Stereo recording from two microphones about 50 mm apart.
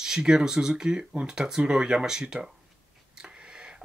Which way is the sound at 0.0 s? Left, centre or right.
Centre.